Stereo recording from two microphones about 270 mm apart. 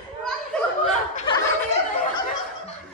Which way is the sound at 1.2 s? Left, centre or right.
Centre.